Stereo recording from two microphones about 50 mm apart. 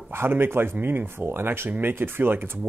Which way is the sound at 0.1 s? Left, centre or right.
Right.